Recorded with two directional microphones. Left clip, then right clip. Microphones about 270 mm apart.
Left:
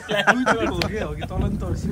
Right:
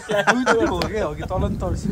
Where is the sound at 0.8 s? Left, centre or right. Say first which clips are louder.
Right 3 dB; centre.